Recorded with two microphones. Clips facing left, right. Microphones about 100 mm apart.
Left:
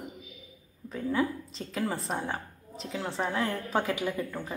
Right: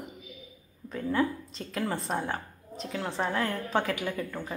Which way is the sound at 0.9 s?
5° left (ahead or behind).